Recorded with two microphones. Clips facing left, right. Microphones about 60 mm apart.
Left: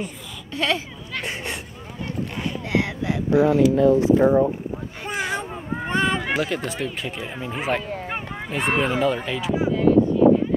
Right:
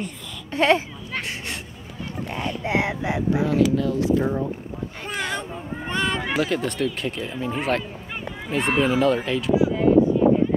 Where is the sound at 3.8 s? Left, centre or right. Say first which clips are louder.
Left 6 dB; left.